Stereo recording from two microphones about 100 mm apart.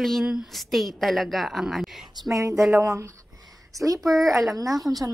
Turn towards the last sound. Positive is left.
turn(degrees=-35)  # may be behind; listen again after turning